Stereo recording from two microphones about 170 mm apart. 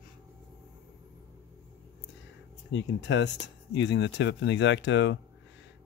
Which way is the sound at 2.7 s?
90° left.